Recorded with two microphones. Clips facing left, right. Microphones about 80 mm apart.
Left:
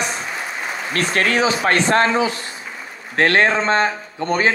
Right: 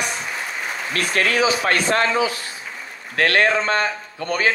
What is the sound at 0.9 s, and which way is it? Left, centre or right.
A man's voice, left.